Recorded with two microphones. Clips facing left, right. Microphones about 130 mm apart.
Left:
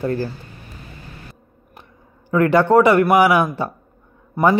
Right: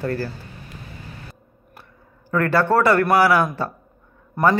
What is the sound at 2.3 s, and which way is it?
Speech, 15° left (ahead or behind).